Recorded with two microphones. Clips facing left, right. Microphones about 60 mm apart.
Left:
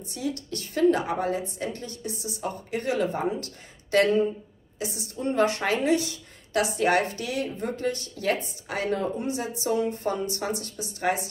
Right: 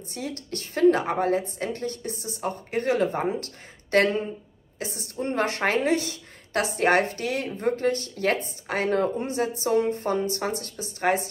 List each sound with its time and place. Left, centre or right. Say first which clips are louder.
0.1 s a woman's voice: left 2 dB; right